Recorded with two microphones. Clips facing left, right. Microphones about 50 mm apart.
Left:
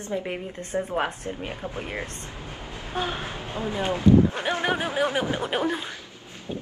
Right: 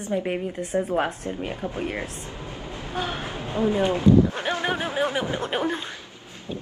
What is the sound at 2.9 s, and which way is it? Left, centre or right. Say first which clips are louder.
Speech: even; left.